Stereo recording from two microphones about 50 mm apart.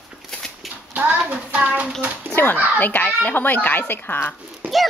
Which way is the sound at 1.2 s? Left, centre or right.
Right.